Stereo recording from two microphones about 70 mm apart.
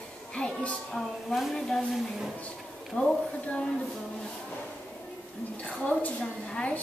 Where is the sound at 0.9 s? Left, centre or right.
Centre.